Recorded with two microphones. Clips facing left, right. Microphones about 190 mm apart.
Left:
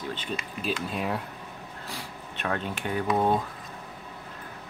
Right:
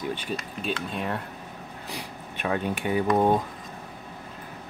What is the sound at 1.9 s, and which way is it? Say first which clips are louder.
Speech: right 3 dB; 15° right (ahead or behind).